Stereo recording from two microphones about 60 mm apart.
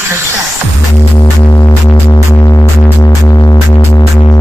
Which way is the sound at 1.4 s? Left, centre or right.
Left.